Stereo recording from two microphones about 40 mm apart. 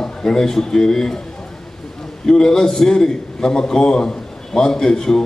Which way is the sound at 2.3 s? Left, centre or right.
Centre.